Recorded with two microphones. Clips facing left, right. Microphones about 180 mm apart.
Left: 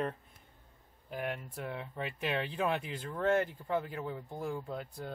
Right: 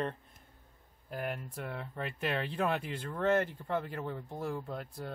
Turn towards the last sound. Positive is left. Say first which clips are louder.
# even
turn(degrees=0)  # may be behind; listen again after turning